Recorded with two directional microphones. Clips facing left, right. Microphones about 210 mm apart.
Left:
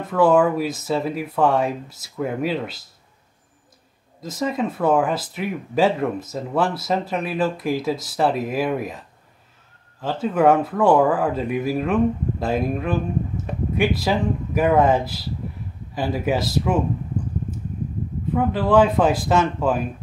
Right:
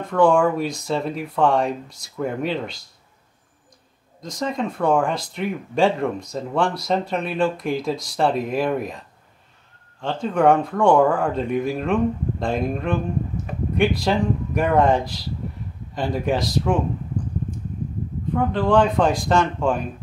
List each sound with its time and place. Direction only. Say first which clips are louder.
0.0 s speech: even; 5° left (ahead or behind)
4.2 s speech: left 2 dB; 5° left (ahead or behind)
18.3 s speech: left 1 dB; 5° left (ahead or behind)